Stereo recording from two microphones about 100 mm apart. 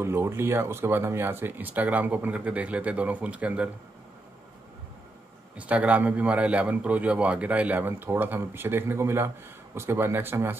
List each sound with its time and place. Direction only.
0.0 s speech: 25° right (ahead or behind)
5.6 s a man's voice: 15° right (ahead or behind)